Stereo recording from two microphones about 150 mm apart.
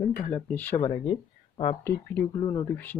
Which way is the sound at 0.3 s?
10° left (ahead or behind).